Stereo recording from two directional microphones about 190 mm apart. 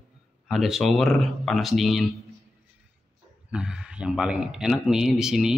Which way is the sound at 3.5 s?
5° right (ahead or behind).